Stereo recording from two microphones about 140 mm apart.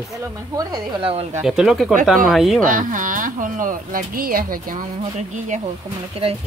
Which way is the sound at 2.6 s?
70° right (ahead or behind).